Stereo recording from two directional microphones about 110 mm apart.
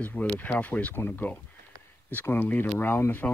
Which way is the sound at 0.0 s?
15° left (ahead or behind).